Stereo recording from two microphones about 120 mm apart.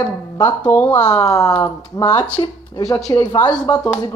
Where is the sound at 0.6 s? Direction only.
15° left (ahead or behind).